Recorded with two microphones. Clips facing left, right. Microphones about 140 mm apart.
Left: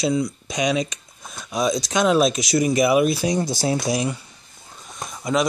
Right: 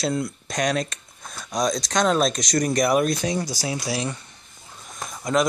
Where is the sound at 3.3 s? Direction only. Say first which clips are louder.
Left 5 dB; 25° left (ahead or behind).